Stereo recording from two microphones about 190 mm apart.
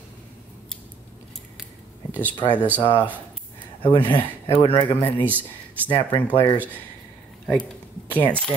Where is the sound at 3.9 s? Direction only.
25° left (ahead or behind).